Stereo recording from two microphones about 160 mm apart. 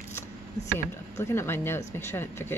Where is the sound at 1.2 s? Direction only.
15° left (ahead or behind).